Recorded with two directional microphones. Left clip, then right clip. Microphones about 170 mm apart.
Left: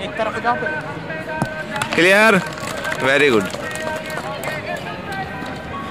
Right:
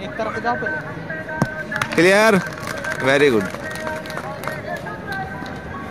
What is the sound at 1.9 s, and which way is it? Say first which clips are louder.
Speech: left 1 dB; 10° right (ahead or behind).